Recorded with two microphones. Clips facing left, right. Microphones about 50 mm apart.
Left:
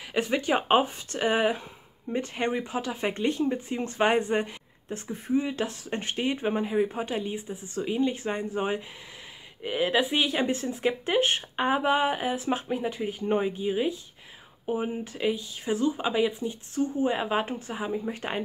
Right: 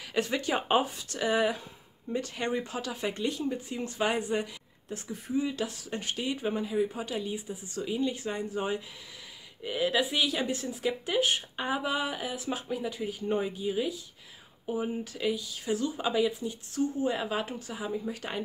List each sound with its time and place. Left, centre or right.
0.1 s speech: left